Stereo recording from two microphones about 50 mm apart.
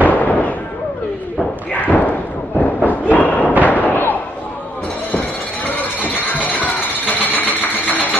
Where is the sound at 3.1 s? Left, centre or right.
Left.